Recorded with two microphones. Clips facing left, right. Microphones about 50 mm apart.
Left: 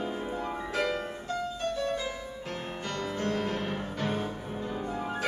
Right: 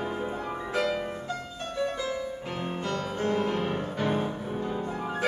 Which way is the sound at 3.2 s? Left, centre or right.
Centre.